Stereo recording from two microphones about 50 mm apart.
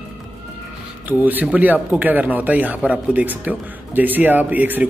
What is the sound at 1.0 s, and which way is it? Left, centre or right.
A man's voice, right.